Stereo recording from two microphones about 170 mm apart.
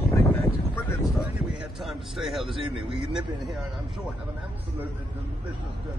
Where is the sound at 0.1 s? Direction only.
15° left (ahead or behind).